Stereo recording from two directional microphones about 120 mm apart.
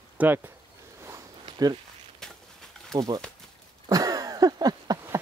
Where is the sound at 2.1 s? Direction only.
5° left (ahead or behind).